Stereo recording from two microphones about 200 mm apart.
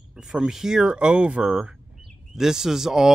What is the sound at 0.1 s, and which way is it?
Speech, 5° right (ahead or behind).